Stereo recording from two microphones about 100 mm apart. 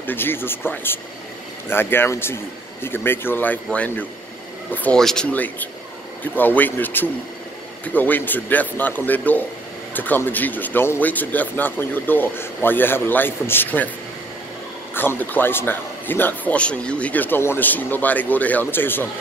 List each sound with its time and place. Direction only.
0.0 s a man's voice: 20° left (ahead or behind)
4.9 s a man's voice: 5° left (ahead or behind)
15.0 s speech: 20° left (ahead or behind)